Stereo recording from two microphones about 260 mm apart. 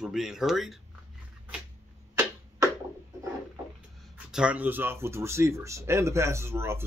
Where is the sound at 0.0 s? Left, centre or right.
Centre.